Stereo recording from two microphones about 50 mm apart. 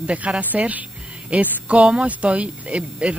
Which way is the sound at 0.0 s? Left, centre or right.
Right.